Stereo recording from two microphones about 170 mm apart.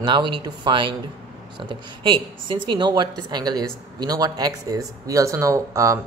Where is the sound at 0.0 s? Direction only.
25° right (ahead or behind).